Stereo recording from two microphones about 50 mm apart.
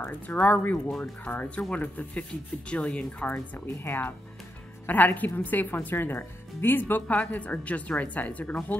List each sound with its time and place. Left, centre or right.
0.0 s a woman's voice: left
3.5 s a woman's voice: left